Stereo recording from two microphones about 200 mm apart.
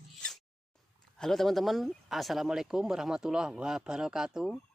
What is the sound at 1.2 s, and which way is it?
Speech, centre (ahead or behind).